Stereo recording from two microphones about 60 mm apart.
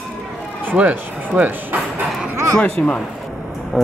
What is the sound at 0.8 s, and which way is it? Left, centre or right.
Speech, right.